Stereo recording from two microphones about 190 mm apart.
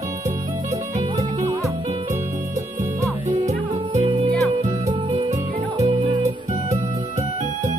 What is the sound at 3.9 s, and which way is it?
Music, 30° right (ahead or behind).